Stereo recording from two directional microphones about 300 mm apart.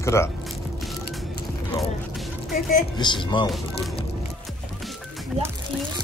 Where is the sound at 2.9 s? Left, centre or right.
Centre.